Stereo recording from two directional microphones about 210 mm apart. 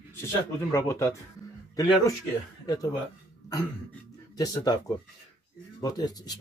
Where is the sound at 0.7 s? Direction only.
15° left (ahead or behind).